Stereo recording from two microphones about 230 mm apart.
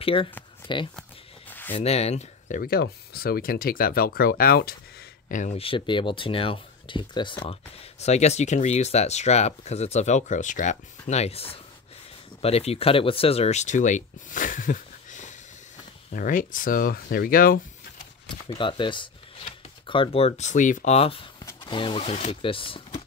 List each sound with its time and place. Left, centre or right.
0.0 s speech: left
1.7 s speech: left
18.3 s speech: left